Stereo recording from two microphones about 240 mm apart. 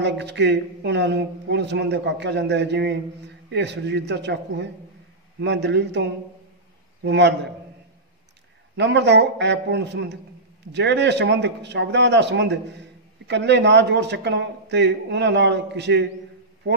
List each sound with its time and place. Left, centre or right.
0.0 s a man's voice: right
7.1 s a man's voice: right
8.7 s a man's voice: right